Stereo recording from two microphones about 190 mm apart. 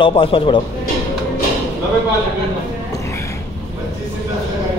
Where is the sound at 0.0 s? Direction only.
25° left (ahead or behind).